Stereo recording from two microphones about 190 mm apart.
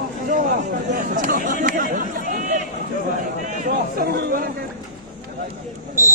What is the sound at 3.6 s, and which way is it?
Chatter, 55° right (ahead or behind).